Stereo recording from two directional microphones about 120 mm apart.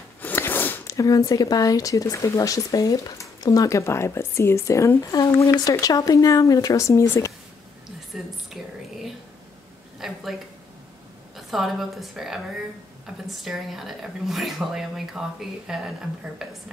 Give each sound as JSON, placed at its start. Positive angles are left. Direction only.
{"t": 0.2, "sound": "a sound", "side_deg": 15}
{"t": 0.9, "sound": "speech", "side_deg": 30}
{"t": 8.1, "sound": "speech", "side_deg": 0}
{"t": 9.9, "sound": "a woman's voice", "side_deg": 0}
{"t": 11.3, "sound": "speech", "side_deg": 0}